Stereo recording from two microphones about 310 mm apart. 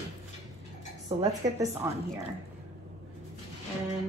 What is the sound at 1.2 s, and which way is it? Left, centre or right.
Speech, centre.